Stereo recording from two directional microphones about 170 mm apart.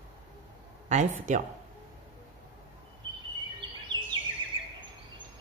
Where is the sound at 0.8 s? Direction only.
45° right (ahead or behind).